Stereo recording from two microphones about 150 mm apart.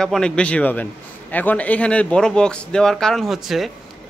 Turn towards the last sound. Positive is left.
turn(degrees=0)  # may be behind; listen again after turning